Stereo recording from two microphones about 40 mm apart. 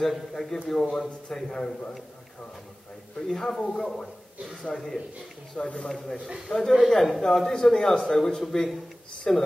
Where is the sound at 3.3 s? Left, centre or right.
Centre.